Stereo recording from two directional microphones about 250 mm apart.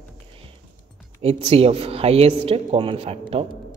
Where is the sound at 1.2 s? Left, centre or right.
Right.